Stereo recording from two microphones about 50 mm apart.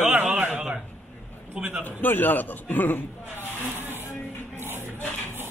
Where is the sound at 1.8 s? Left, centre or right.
Left.